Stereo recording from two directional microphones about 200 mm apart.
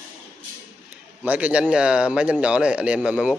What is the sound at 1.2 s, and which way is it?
Speech, 5° right (ahead or behind).